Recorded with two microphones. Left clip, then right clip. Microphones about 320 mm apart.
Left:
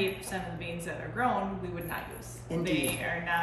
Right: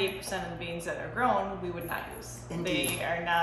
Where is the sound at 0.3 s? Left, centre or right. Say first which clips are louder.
Right 2 dB; centre.